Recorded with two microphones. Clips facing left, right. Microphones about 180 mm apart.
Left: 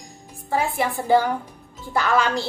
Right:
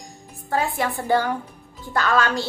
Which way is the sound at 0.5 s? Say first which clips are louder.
Left 1 dB; 10° left (ahead or behind).